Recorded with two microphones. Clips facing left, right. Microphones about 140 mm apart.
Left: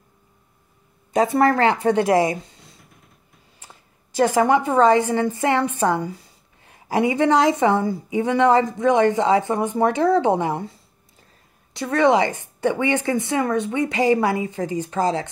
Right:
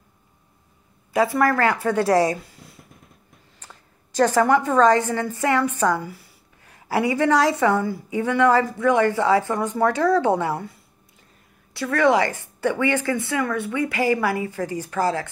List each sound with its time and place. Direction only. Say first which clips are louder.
1.1 s a woman's voice: left 2 dB; 25° left (ahead or behind)
2.3 s a sound: left 1 dB; 25° left (ahead or behind)
4.2 s a woman's voice: even; 15° left (ahead or behind)
11.7 s a woman's voice: left 1 dB; 20° left (ahead or behind)